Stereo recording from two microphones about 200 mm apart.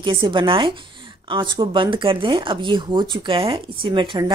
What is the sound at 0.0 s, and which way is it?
Speech, 25° right (ahead or behind).